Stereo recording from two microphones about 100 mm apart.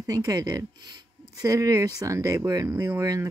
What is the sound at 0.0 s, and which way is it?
Speech, 35° right (ahead or behind).